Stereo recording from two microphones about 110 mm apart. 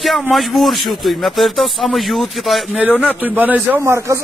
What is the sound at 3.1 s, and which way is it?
A man's voice, 15° right (ahead or behind).